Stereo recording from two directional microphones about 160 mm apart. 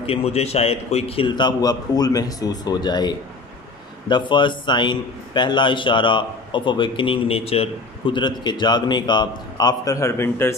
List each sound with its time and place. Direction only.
0.0 s a man's voice: 40° left (ahead or behind); by 10.5 s 15° left (ahead or behind)